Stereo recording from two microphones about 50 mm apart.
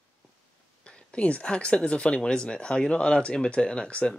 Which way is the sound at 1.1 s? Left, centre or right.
Left.